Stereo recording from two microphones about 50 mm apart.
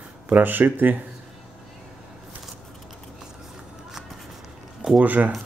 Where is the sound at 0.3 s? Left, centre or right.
Right.